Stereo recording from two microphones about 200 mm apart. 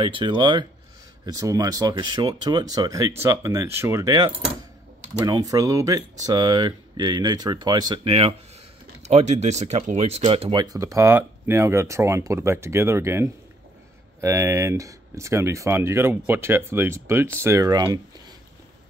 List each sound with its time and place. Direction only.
0.0 s speech: 25° right (ahead or behind)